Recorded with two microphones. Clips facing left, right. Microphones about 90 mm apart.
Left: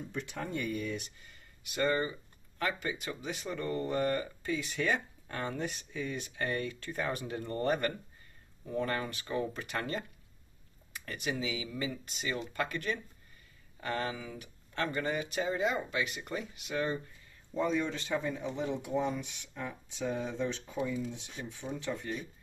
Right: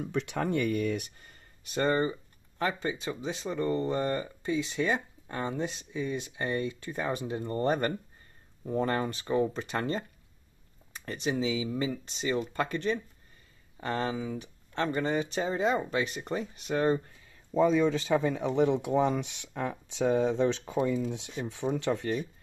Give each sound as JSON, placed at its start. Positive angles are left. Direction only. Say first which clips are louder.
{"t": 0.0, "sound": "speech", "louder": "right 8 dB", "side_deg": -80}
{"t": 18.1, "sound": "speech", "louder": "right 8 dB", "side_deg": -90}